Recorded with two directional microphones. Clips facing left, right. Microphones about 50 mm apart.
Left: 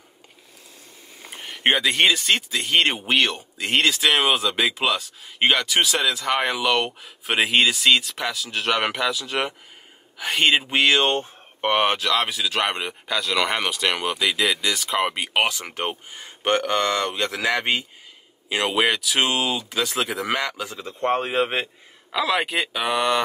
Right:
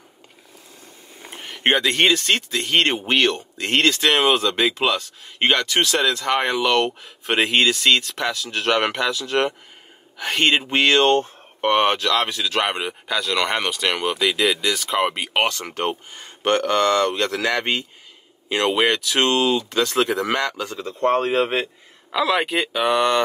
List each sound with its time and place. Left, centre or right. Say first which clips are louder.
1.4 s a man's voice: right 1 dB; centre
22.1 s speech: right 2 dB; centre